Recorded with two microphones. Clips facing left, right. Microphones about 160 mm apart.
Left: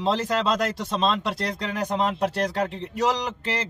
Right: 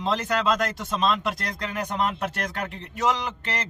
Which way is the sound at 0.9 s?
30° left (ahead or behind).